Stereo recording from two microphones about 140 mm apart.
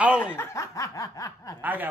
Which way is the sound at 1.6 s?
15° right (ahead or behind).